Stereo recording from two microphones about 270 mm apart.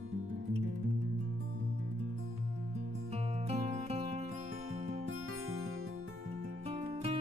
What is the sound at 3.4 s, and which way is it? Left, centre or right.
Music, right.